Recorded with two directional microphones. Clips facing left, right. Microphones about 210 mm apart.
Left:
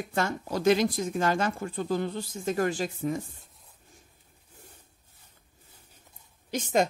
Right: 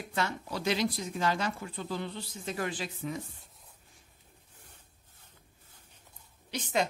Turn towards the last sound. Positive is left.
turn(degrees=45)  # may be behind; listen again after turning